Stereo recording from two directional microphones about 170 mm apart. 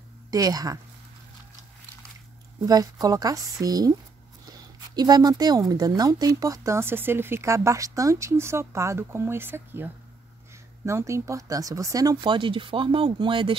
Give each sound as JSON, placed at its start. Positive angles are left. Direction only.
{"t": 0.3, "sound": "speech", "side_deg": -20}
{"t": 2.6, "sound": "speech", "side_deg": -20}
{"t": 4.5, "sound": "a sound", "side_deg": -25}
{"t": 5.7, "sound": "speech", "side_deg": -25}
{"t": 10.9, "sound": "speech", "side_deg": -15}